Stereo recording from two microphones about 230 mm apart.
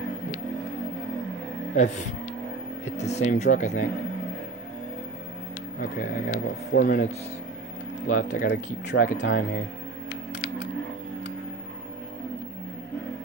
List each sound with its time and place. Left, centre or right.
2.8 s speech: left
5.8 s speech: left
8.8 s speech: left